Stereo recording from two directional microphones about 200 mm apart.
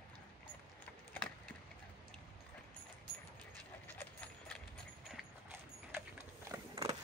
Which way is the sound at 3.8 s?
5° left (ahead or behind).